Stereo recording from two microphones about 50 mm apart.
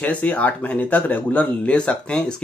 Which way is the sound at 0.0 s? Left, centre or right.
Left.